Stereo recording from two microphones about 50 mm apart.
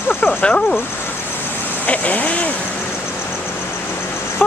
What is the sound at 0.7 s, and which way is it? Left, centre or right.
Vehicle, left.